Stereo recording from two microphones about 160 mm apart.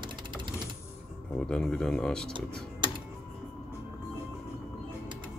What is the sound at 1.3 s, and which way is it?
Speech, 5° left (ahead or behind).